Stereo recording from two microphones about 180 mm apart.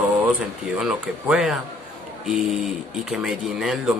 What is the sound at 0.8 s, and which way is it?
Speech, 5° right (ahead or behind).